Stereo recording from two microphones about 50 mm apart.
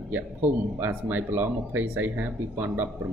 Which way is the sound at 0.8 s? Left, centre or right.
Right.